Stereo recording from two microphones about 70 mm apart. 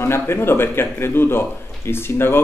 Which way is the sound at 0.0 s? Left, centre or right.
Left.